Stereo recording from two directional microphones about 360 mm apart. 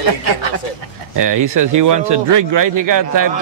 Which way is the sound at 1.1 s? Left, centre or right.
Right.